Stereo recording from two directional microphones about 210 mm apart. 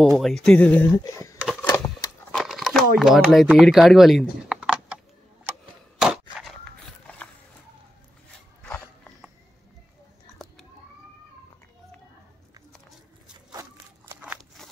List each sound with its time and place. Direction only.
0.0 s speech: centre (ahead or behind)
2.3 s crumpling: centre (ahead or behind)
3.0 s speech: centre (ahead or behind)
5.9 s a sound: centre (ahead or behind)
8.6 s dog: 5° left (ahead or behind)
13.5 s a sound: 15° right (ahead or behind)
14.2 s crunch: 5° right (ahead or behind)